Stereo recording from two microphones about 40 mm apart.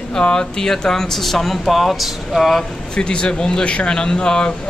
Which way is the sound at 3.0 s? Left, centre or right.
Left.